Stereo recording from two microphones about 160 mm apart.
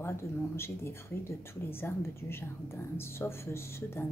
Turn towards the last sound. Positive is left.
turn(degrees=15)  # may be behind; listen again after turning